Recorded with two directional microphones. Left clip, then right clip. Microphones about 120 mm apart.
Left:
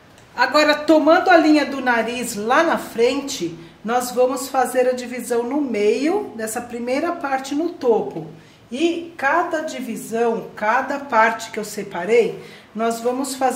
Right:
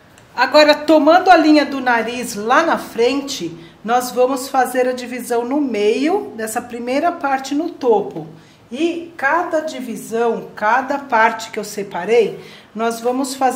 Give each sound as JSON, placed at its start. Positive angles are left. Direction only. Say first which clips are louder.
{"t": 0.4, "sound": "a woman's voice", "louder": "right 5 dB", "side_deg": -25}
{"t": 9.2, "sound": "a woman's voice", "louder": "right 2 dB", "side_deg": -15}